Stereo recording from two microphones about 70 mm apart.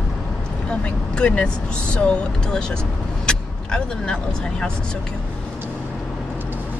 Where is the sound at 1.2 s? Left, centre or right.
Centre.